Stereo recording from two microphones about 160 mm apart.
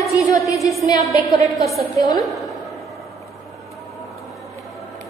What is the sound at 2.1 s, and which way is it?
Speech, centre (ahead or behind).